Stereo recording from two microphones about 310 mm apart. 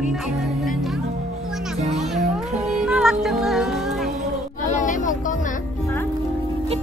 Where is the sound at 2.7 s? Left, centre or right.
Centre.